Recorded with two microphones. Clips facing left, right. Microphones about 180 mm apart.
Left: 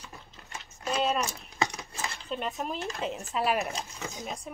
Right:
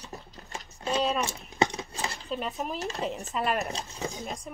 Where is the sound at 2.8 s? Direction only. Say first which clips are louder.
Right 2 dB; 35° right (ahead or behind).